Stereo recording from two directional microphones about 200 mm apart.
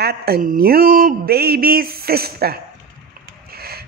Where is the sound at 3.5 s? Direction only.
50° right (ahead or behind).